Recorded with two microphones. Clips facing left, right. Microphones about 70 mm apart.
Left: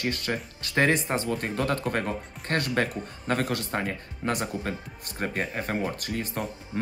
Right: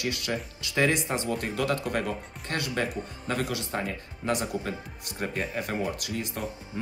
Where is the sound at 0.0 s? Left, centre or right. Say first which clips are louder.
Left 1 dB; left.